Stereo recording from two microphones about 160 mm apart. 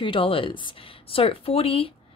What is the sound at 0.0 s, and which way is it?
A woman's voice, 35° left (ahead or behind).